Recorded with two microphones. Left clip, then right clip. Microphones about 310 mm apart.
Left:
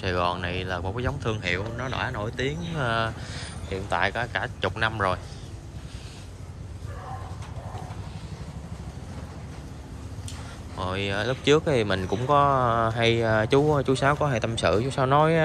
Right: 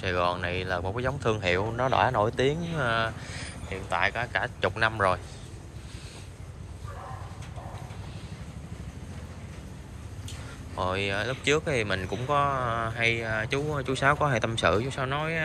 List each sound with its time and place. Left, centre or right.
0.0 s speech: centre
10.8 s speech: centre